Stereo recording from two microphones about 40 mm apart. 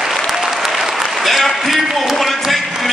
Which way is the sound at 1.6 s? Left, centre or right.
Centre.